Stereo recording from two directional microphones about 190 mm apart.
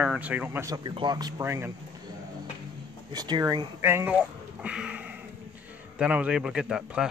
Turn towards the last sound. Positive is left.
turn(degrees=-5)  # may be behind; listen again after turning